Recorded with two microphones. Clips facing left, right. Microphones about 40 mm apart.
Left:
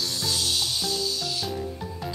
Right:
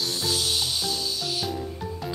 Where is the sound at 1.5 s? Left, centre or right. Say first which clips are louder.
Even; centre.